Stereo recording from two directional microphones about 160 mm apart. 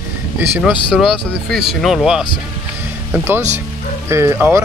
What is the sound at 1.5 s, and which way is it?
Speech, centre (ahead or behind).